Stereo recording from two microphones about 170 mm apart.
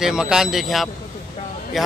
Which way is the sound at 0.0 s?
5° right (ahead or behind).